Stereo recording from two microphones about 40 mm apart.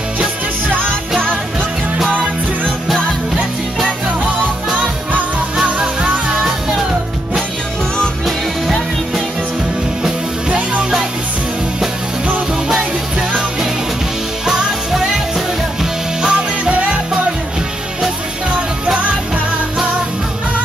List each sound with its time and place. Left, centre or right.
5.8 s music: right
10.5 s music: right
14.4 s music: centre
16.3 s music: right